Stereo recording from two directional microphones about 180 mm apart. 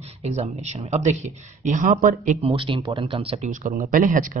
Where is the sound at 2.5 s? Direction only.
30° right (ahead or behind); by 4.4 s 45° right (ahead or behind).